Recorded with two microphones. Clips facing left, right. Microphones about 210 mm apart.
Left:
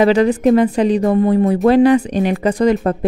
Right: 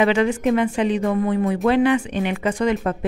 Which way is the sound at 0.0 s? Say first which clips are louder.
Left 6 dB; 35° left (ahead or behind).